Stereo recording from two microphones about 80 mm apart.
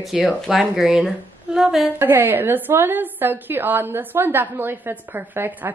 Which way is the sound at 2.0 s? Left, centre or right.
Right.